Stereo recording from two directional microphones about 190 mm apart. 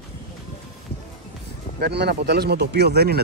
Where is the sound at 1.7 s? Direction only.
60° right (ahead or behind).